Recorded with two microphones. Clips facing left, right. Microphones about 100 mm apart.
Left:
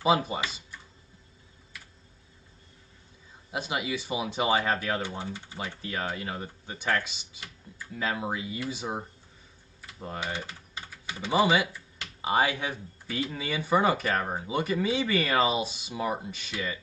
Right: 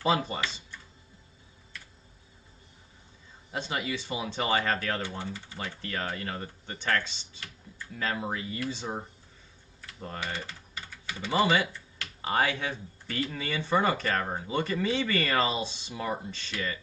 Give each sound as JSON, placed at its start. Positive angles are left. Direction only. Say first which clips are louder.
{"t": 0.0, "sound": "speech", "louder": "left 2 dB", "side_deg": 10}
{"t": 3.5, "sound": "speech", "louder": "left 1 dB", "side_deg": 10}
{"t": 9.8, "sound": "typing", "louder": "left 2 dB", "side_deg": 10}
{"t": 11.2, "sound": "speech", "louder": "left 2 dB", "side_deg": 10}